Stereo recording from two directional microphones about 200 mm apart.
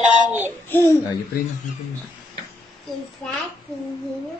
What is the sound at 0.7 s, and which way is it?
Speech, 15° left (ahead or behind).